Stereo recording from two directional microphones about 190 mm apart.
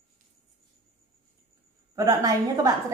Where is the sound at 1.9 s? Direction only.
20° right (ahead or behind).